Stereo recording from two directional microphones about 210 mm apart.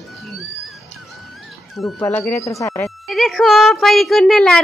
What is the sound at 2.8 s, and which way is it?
Speech, centre (ahead or behind).